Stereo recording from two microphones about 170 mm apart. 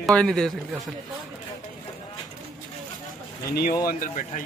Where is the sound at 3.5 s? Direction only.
60° left (ahead or behind).